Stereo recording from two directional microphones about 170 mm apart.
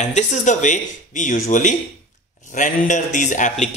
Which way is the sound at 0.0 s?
45° left (ahead or behind).